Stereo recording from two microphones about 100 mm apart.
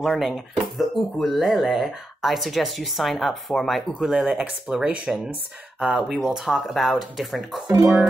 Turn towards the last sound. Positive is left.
turn(degrees=-20)  # may be behind; listen again after turning